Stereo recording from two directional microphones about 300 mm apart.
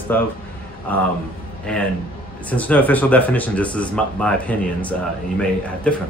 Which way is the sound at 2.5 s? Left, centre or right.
Centre.